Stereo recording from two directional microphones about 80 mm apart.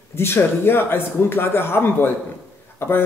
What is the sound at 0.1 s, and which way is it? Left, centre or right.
A man's voice, left.